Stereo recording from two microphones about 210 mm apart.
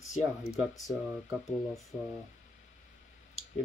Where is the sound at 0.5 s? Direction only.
Centre (ahead or behind).